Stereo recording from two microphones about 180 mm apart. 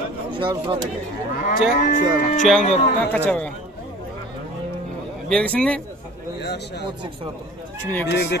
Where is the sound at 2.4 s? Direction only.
Centre (ahead or behind).